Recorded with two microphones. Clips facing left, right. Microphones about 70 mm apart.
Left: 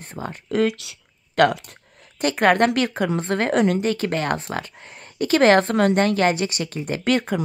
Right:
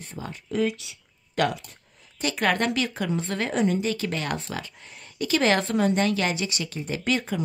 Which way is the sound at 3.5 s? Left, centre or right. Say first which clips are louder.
Left 4 dB; left.